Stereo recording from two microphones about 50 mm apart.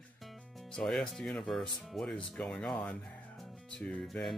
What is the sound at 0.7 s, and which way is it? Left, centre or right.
Speech, centre.